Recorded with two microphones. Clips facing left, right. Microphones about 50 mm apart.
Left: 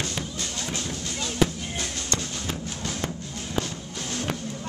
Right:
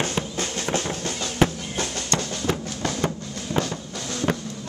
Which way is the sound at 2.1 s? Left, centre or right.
Right.